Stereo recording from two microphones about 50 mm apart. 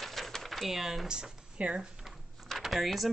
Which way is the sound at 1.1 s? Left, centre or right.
Centre.